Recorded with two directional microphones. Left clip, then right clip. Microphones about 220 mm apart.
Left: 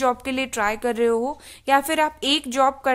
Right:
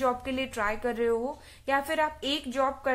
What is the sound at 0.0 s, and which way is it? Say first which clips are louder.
A woman's voice: left 6 dB; 50° left (ahead or behind).